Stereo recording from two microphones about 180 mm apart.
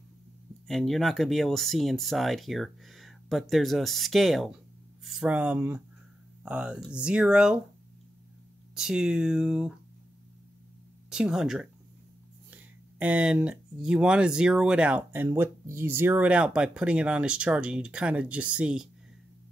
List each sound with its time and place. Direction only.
0.7 s speech: centre (ahead or behind)
8.7 s speech: 5° right (ahead or behind)
11.1 s speech: 5° right (ahead or behind)
13.0 s speech: 5° right (ahead or behind)